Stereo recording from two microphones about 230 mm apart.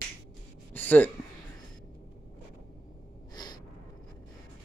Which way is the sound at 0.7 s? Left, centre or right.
Centre.